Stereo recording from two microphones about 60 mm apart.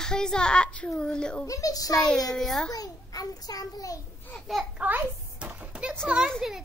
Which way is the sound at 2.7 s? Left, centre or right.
Left.